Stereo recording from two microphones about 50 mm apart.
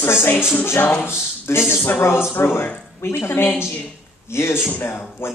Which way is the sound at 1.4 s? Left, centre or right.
Left.